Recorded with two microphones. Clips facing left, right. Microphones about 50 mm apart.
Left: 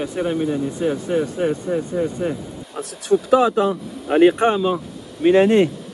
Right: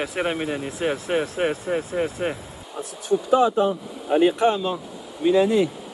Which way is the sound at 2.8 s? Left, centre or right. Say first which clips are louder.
Left 5 dB; left.